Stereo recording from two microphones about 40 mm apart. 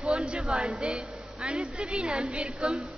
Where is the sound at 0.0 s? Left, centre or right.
Centre.